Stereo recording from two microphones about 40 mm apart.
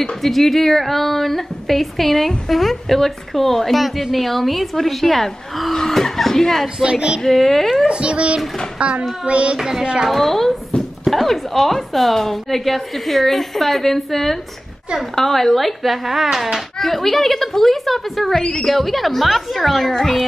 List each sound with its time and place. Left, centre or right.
0.2 s a woman's voice: centre
6.8 s a child's voice: right
7.2 s a child's voice: centre
7.9 s a child's voice: right
9.6 s speech: centre
10.0 s a woman's voice: centre
18.4 s a woman's voice: left
18.7 s a woman's voice: centre